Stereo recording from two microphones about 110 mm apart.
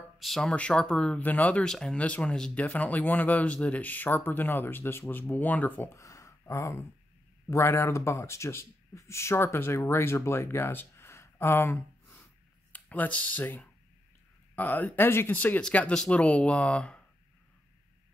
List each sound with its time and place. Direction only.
0.2 s speech: 5° left (ahead or behind)